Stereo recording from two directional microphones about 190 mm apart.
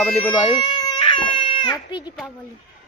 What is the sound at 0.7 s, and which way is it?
Baby cry, 25° left (ahead or behind).